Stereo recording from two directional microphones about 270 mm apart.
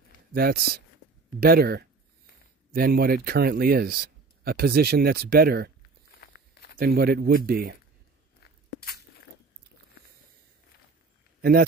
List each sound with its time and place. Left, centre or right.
0.3 s speech: right
6.2 s walk: left
6.8 s speech: right
8.4 s a sound: left